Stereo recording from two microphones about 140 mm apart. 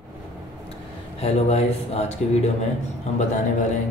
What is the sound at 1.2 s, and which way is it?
Speech, 50° left (ahead or behind).